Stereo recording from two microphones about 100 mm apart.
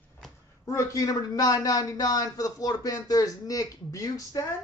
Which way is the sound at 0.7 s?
35° left (ahead or behind).